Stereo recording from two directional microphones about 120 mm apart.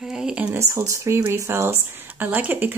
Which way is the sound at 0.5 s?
25° right (ahead or behind).